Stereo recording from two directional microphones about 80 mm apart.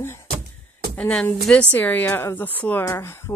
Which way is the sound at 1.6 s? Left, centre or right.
Left.